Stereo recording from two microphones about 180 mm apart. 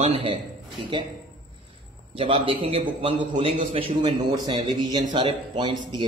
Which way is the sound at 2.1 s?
30° right (ahead or behind).